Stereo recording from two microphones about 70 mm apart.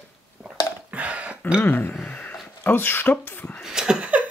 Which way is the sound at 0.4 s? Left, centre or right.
Centre.